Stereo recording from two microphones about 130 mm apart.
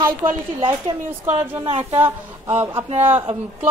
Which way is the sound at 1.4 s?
20° right (ahead or behind).